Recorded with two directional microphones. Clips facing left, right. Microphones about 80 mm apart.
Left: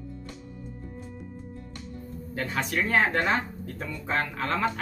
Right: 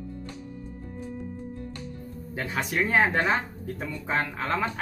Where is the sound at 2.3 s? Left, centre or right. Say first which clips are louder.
Even; centre.